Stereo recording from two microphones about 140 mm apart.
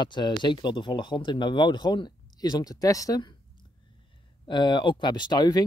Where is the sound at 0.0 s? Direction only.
35° left (ahead or behind).